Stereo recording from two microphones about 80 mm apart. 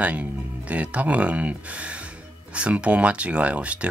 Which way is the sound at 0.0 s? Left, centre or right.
Centre.